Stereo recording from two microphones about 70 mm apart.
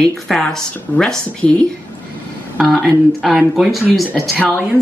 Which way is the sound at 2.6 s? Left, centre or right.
Centre.